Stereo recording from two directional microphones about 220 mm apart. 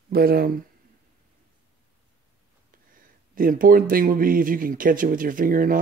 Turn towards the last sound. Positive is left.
turn(degrees=-40)  # may be behind; listen again after turning